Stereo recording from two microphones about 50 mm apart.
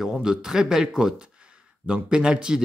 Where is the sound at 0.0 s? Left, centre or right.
Centre.